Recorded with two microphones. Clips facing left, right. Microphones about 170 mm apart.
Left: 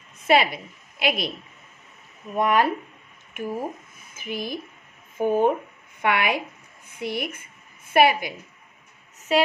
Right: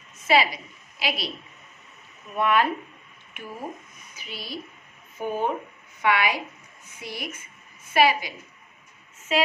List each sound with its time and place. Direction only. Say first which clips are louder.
0.2 s a woman's voice: left 2 dB; 55° left (ahead or behind)
2.3 s a woman's voice: left 2 dB; 40° left (ahead or behind); by 8.4 s 55° left (ahead or behind)